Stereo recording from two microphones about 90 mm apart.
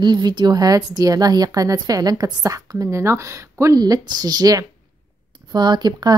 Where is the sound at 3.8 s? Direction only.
50° right (ahead or behind).